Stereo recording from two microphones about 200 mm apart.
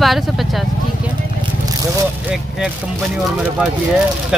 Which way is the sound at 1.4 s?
20° right (ahead or behind).